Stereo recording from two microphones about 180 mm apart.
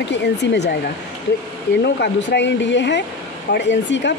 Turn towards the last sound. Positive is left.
turn(degrees=85)